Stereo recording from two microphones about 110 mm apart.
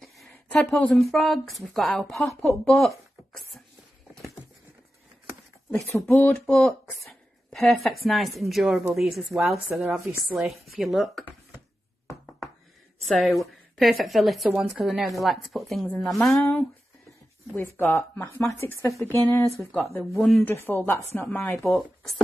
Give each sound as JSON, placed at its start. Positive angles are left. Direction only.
{"t": 0.3, "sound": "a sound", "side_deg": 10}
{"t": 0.9, "sound": "speech", "side_deg": 0}
{"t": 5.9, "sound": "speech", "side_deg": 25}
{"t": 6.3, "sound": "speech", "side_deg": 10}
{"t": 9.7, "sound": "speech", "side_deg": -10}
{"t": 13.0, "sound": "a woman's voice", "side_deg": 0}
{"t": 17.6, "sound": "speech", "side_deg": 20}
{"t": 19.8, "sound": "speech", "side_deg": 0}
{"t": 20.4, "sound": "speech", "side_deg": 20}
{"t": 21.6, "sound": "speech", "side_deg": 0}